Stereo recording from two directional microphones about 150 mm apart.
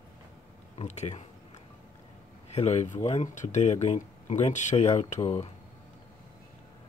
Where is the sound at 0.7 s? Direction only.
45° left (ahead or behind).